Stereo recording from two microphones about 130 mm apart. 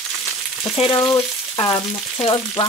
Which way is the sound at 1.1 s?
30° left (ahead or behind).